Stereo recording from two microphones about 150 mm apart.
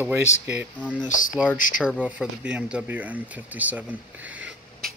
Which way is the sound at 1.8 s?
5° right (ahead or behind).